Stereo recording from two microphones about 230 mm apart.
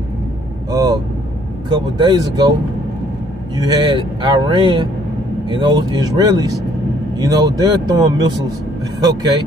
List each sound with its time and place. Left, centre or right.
0.7 s vehicle: centre
1.7 s speech: centre
3.5 s speech: centre